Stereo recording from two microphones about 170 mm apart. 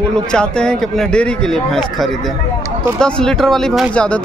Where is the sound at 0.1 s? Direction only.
5° left (ahead or behind).